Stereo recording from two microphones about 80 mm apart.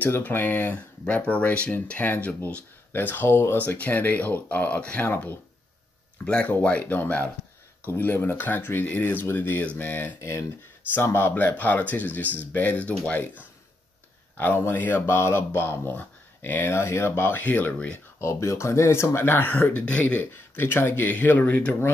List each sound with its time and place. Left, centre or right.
0.0 s speech: left
5.0 s speech: left
6.2 s speech: centre
14.3 s speech: left
18.2 s speech: left; by 21.9 s centre